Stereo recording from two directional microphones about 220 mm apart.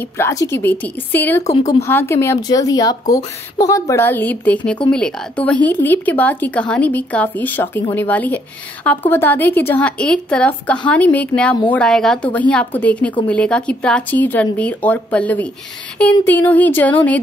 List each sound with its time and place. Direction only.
0.2 s a woman's voice: 15° left (ahead or behind)